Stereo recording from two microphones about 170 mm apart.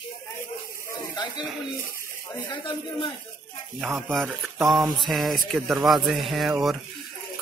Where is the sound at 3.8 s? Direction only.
Centre (ahead or behind).